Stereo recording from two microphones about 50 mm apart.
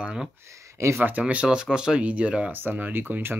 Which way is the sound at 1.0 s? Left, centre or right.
Right.